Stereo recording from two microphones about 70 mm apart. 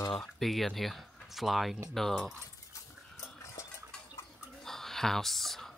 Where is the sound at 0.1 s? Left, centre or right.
Centre.